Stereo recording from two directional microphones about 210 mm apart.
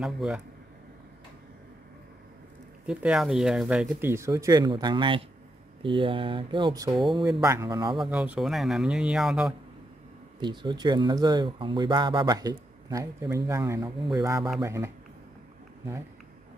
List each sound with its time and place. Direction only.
0.0 s speech: centre (ahead or behind)
2.9 s speech: 5° right (ahead or behind)
7.0 s speech: centre (ahead or behind)
7.2 s speech: 15° right (ahead or behind)
8.1 s speech: 5° right (ahead or behind)
10.4 s speech: 20° right (ahead or behind)